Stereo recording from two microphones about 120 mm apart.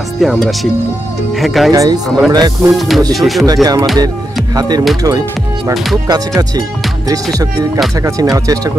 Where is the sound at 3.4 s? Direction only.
30° right (ahead or behind).